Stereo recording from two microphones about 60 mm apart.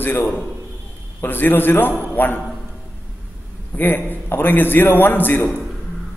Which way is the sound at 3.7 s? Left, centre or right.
Left.